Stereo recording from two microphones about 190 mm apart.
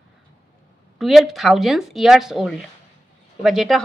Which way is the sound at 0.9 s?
Centre (ahead or behind).